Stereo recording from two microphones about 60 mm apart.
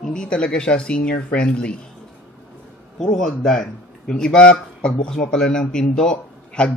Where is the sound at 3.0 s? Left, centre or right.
Centre.